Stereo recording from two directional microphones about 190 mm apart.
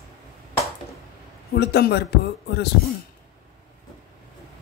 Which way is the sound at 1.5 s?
60° left (ahead or behind).